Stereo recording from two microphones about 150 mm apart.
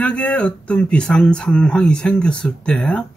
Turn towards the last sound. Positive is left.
turn(degrees=5)  # may be behind; listen again after turning